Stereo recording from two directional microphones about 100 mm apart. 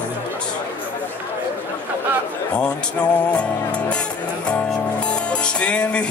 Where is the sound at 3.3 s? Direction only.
10° left (ahead or behind).